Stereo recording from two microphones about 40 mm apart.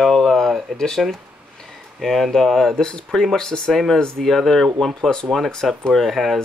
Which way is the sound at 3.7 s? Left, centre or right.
Centre.